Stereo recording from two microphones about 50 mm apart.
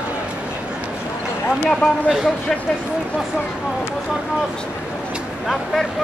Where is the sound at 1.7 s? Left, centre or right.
Centre.